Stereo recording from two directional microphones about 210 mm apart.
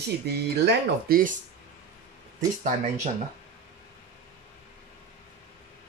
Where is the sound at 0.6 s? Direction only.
45° right (ahead or behind).